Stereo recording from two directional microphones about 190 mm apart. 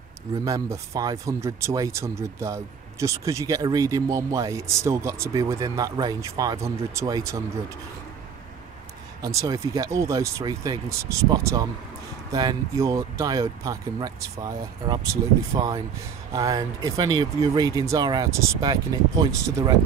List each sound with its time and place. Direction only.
0.5 s speech: 20° right (ahead or behind)
9.2 s speech: 20° right (ahead or behind)